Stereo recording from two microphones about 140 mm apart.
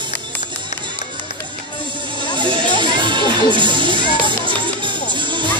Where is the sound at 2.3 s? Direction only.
35° right (ahead or behind).